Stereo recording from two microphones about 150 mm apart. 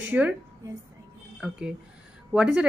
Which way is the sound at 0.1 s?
10° right (ahead or behind).